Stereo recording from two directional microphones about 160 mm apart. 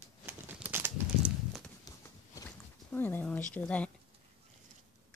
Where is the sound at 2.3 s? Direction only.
15° left (ahead or behind).